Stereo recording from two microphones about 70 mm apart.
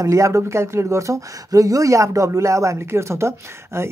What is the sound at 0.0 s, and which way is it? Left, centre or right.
Speech, right.